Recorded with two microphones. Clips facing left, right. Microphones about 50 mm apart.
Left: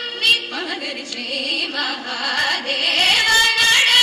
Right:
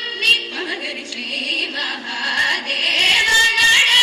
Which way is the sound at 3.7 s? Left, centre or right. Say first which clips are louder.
Right 1 dB; right.